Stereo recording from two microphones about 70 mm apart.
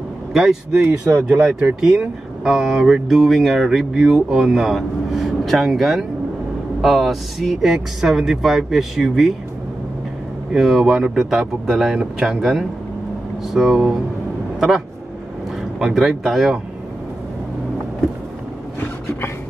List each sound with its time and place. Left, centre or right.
0.3 s speech: centre
0.8 s speech: right
1.6 s speech: centre
10.5 s speech: centre
15.8 s speech: centre